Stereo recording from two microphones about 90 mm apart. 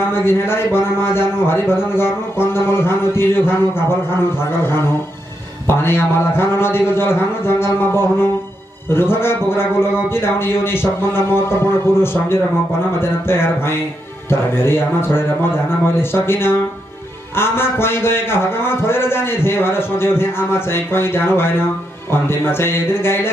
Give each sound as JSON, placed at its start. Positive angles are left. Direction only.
{"t": 0.0, "sound": "a man's voice", "side_deg": 25}